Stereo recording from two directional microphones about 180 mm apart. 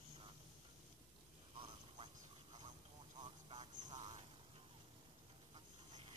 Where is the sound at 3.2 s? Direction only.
25° right (ahead or behind).